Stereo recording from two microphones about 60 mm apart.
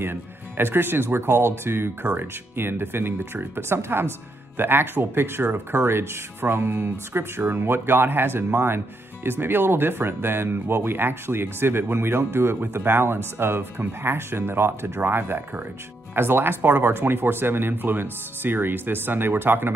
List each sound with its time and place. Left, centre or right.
0.0 s speech: right